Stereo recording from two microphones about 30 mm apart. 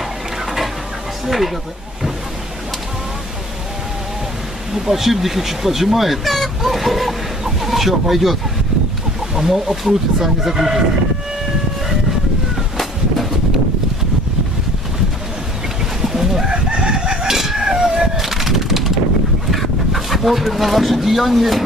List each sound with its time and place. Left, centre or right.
1.2 s speech: centre
4.7 s speech: centre
16.0 s bird: centre
16.7 s chicken: right
17.1 s fowl: centre
19.5 s speech: centre